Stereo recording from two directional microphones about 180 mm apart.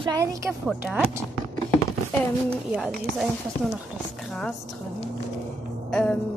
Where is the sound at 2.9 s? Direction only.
5° right (ahead or behind).